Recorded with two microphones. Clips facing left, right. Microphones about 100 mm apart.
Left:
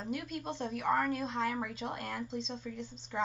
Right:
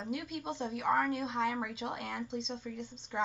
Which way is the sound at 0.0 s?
Centre (ahead or behind).